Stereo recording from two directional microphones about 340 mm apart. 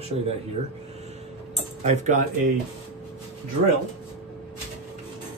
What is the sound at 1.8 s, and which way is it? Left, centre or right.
Speech, centre.